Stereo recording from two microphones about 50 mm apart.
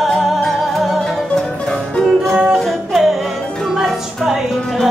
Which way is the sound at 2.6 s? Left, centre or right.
Centre.